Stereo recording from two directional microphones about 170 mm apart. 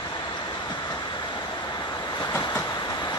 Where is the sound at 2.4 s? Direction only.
25° left (ahead or behind).